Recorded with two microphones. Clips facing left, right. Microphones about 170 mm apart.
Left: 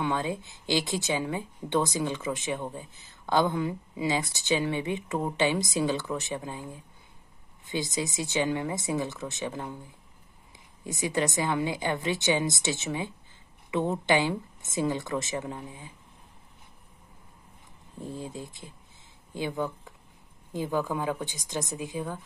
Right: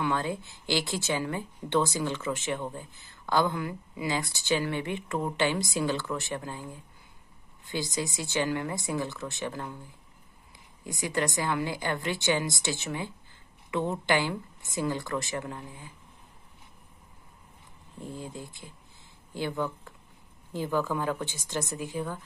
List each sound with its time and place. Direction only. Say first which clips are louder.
0.0 s speech: even; 20° left (ahead or behind)
7.7 s speech: left 2 dB; 20° left (ahead or behind)
10.8 s speech: left 2 dB; 20° left (ahead or behind)
18.1 s a woman's voice: left 2 dB; 25° left (ahead or behind)